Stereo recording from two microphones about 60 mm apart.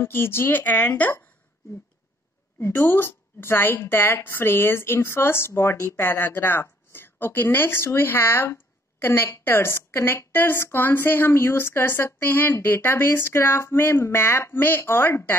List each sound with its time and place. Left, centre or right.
0.0 s speech: left
2.6 s a woman's voice: left
6.0 s speech: left